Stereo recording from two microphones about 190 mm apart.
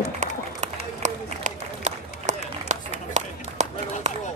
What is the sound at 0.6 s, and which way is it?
Run, 40° right (ahead or behind).